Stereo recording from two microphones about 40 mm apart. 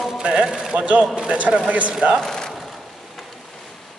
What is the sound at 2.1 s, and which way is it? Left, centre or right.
Speech, centre.